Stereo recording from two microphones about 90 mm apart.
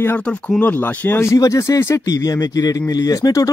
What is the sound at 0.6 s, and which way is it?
Speech, 20° left (ahead or behind).